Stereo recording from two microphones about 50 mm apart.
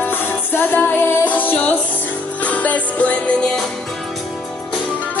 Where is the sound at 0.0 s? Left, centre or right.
Left.